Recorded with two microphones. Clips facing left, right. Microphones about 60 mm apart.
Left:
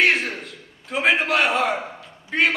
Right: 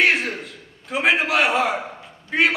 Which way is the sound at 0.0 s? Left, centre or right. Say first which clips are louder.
Even; centre.